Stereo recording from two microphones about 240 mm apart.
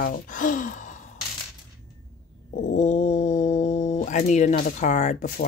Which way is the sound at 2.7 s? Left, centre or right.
Left.